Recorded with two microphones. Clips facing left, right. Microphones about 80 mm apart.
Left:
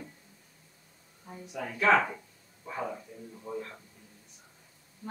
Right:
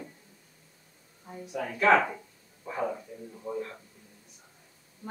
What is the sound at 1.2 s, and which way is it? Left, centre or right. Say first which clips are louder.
Speech: right 3 dB; centre.